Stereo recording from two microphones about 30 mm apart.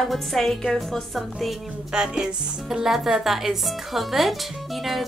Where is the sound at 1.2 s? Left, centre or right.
Centre.